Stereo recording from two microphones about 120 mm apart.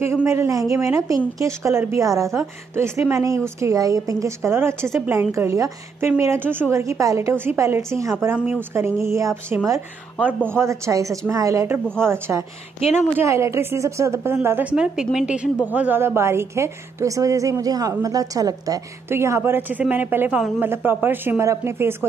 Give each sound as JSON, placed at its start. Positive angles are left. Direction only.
{"t": 0.0, "sound": "a woman's voice", "side_deg": -25}
{"t": 12.8, "sound": "a woman's voice", "side_deg": 60}
{"t": 13.2, "sound": "a woman's voice", "side_deg": -25}